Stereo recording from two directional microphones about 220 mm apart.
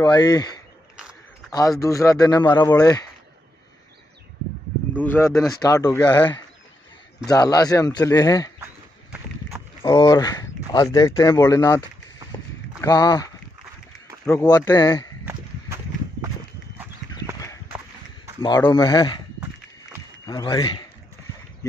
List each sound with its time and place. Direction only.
0.0 s speech: 20° left (ahead or behind)
4.9 s speech: 10° left (ahead or behind)
7.2 s speech: 15° left (ahead or behind)
9.5 s a sound: 5° right (ahead or behind)
9.8 s speech: 20° left (ahead or behind)
12.3 s walk: 20° left (ahead or behind)
12.8 s speech: 15° left (ahead or behind)
14.2 s speech: 5° left (ahead or behind)
14.5 s speech: 15° left (ahead or behind)
17.1 s clip-clop: 15° left (ahead or behind)
18.7 s speech: 20° left (ahead or behind)
20.2 s speech: 15° left (ahead or behind)